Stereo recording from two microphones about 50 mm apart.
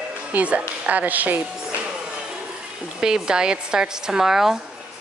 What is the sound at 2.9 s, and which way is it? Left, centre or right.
Speech, centre.